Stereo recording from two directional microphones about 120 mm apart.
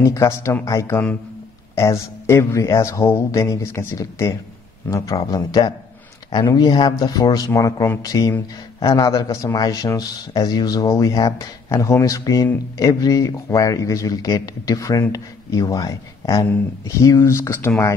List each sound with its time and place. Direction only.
0.0 s speech: 25° left (ahead or behind)